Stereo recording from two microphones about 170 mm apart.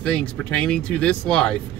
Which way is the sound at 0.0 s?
5° left (ahead or behind).